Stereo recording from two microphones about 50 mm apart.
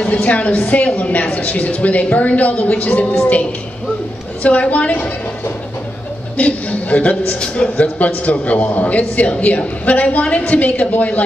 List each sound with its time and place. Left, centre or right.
0.0 s a man's voice: left
4.4 s a man's voice: left
6.3 s a man's voice: left